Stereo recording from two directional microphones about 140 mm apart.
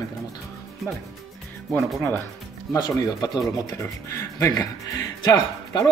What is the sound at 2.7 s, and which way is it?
Speech, 25° left (ahead or behind).